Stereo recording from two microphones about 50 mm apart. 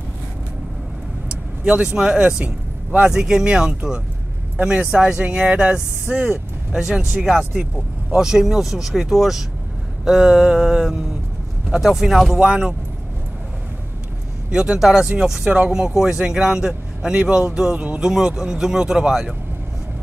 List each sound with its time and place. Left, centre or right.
1.3 s speech: centre
3.1 s speech: centre; by 6.2 s right
6.7 s speech: centre
12.4 s speech: centre
14.5 s speech: centre
14.8 s speech: centre
15.0 s speech: centre